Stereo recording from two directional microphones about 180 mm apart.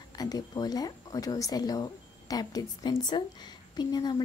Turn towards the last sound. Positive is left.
turn(degrees=25)  # may be behind; listen again after turning